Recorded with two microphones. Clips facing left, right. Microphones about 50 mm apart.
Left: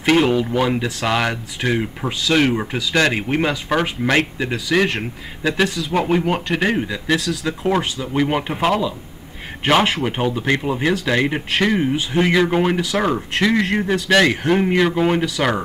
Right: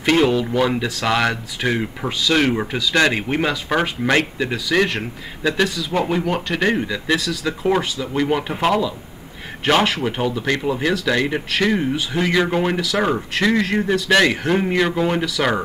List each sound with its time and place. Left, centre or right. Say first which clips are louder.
0.0 s speech: left 1 dB; centre
8.3 s speech: even; left
8.5 s speech: even; centre
10.0 s speech: left 1 dB; centre